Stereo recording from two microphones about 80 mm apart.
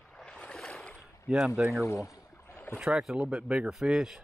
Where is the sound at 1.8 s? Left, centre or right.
Left.